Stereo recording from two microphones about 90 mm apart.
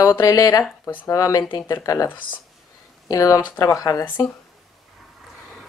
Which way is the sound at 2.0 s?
20° left (ahead or behind).